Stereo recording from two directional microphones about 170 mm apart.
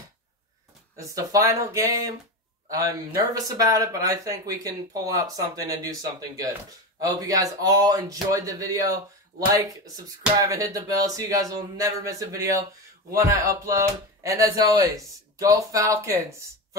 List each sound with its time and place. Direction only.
0.9 s speech: 20° right (ahead or behind)